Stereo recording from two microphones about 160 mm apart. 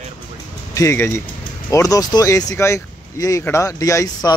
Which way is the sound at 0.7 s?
15° left (ahead or behind).